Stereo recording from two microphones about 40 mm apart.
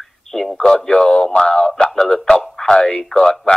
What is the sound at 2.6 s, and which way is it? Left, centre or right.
Speech, centre.